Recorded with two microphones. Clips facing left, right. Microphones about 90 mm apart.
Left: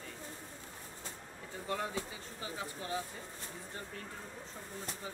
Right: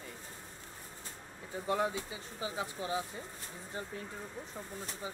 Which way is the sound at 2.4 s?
15° right (ahead or behind).